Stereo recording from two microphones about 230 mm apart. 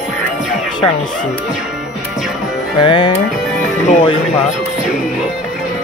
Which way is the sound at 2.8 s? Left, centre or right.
Centre.